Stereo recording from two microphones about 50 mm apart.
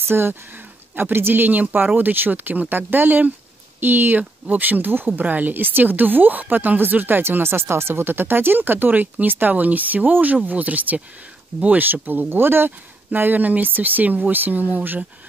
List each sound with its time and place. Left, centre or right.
0.1 s speech: right